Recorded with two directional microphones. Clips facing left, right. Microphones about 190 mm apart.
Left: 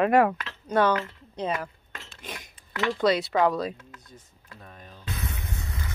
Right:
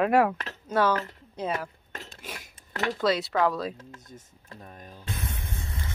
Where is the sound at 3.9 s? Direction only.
45° right (ahead or behind).